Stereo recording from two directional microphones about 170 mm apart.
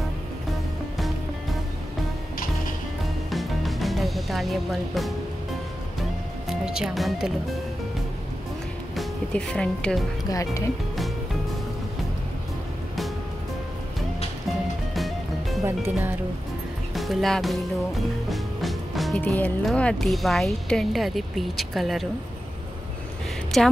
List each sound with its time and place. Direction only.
0.9 s music: centre (ahead or behind)
2.3 s music: 55° left (ahead or behind)
3.3 s music: centre (ahead or behind)
6.6 s speech: 5° right (ahead or behind)
8.9 s speech: 5° left (ahead or behind)
10.2 s speech: 20° left (ahead or behind)
15.0 s music: centre (ahead or behind)
15.6 s speech: 15° right (ahead or behind)
16.9 s music: centre (ahead or behind)
23.5 s a woman's voice: centre (ahead or behind)